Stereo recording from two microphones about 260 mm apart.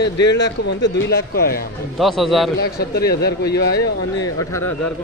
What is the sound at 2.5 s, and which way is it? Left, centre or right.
Speech, left.